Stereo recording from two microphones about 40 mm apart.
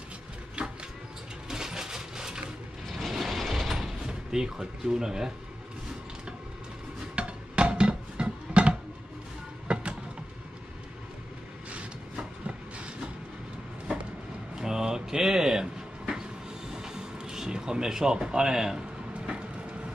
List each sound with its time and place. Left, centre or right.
0.6 s music: right
1.5 s a sound: centre
2.9 s mechanisms: centre
4.1 s speech: centre
7.2 s music: right
9.7 s vehicle: right
14.5 s a sound: centre
18.8 s vehicle: right